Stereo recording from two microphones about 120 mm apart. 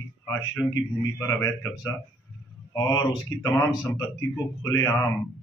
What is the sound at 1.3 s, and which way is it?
Speech, 25° left (ahead or behind).